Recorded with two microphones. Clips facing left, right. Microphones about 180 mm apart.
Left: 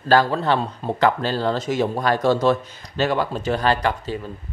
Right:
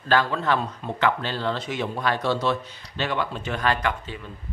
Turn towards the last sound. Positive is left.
turn(degrees=40)  # may be behind; listen again after turning